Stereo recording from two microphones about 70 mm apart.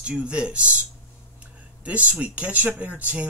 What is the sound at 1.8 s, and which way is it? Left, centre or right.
Speech, centre.